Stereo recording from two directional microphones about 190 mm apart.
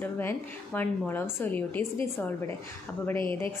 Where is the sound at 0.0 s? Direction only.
10° left (ahead or behind).